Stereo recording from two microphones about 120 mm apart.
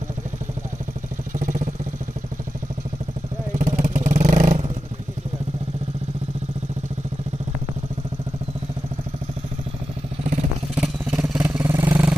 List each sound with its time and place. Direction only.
1.4 s vehicle: 90° right
3.5 s vehicle: 90° right
10.7 s vehicle: 5° right (ahead or behind)